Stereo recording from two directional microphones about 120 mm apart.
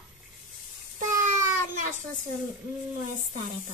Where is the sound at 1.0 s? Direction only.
90° right.